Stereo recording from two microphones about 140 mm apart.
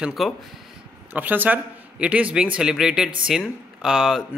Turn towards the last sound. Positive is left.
turn(degrees=-5)  # may be behind; listen again after turning